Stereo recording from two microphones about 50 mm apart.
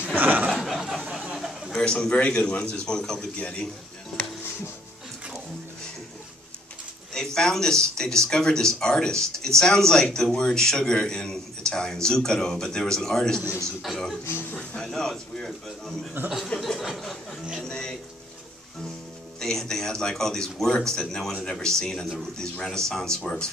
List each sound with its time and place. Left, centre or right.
0.0 s a sound: right
0.5 s a sound: centre
1.7 s a man's voice: centre
2.7 s a man's voice: centre
3.3 s a man's voice: left
7.2 s a man's voice: centre
14.5 s a man's voice: left
14.8 s a man's voice: centre
16.5 s a sound: centre
16.8 s speech: centre
17.6 s music: centre
19.4 s a man's voice: centre